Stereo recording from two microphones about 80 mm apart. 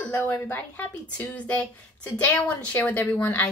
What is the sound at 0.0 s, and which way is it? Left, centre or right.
A woman's voice, left.